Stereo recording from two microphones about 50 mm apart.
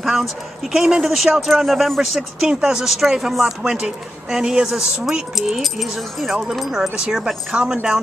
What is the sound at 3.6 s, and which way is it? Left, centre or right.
A woman's voice, centre.